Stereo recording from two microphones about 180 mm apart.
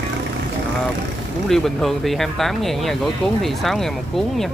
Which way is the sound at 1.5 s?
Centre (ahead or behind).